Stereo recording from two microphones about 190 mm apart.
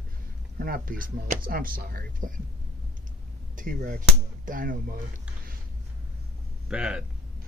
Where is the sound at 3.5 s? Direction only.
45° right (ahead or behind).